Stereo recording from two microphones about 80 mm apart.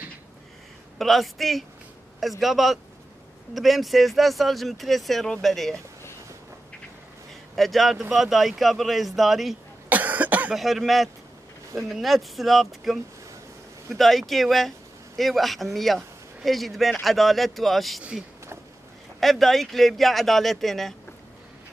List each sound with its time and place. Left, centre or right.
0.9 s speech: centre
7.5 s speech: centre
9.8 s cough: right
10.5 s speech: centre
19.1 s speech: centre